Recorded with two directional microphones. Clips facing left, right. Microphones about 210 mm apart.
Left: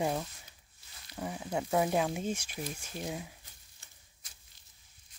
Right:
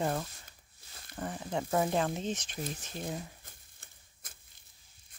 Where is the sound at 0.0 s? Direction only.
10° left (ahead or behind).